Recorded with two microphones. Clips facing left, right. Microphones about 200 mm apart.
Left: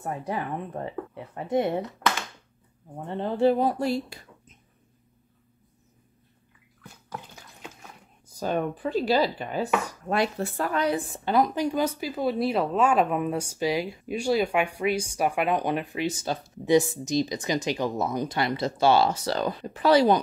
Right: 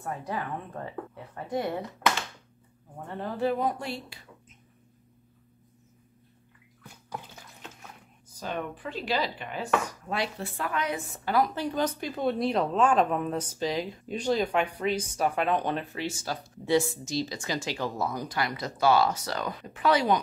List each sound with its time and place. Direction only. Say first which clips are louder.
0.0 s speech: left 3 dB; 20° left (ahead or behind)
3.1 s speech: left 6 dB; 25° left (ahead or behind); by 4.2 s 40° left (ahead or behind)
8.4 s speech: left 7 dB; 40° left (ahead or behind)
10.0 s a woman's voice: left 6 dB; 50° left (ahead or behind); by 20.2 s 35° left (ahead or behind)